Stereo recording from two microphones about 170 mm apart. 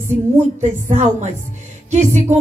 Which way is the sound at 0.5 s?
45° right (ahead or behind).